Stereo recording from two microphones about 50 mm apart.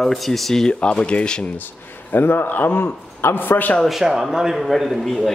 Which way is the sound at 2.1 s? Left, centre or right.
Left.